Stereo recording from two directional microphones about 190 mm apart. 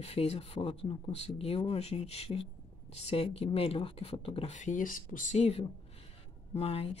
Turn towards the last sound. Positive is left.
turn(degrees=30)  # may be behind; listen again after turning